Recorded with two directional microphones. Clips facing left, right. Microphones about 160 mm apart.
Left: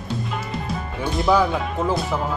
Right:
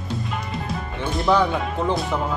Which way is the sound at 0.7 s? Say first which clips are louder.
Left 1 dB; centre (ahead or behind).